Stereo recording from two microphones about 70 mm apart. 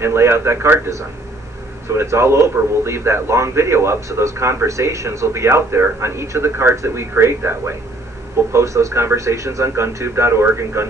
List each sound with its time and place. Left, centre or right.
0.0 s a man's voice: right